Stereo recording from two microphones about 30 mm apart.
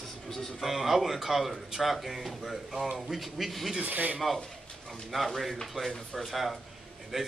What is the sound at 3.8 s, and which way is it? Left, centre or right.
Speech, right.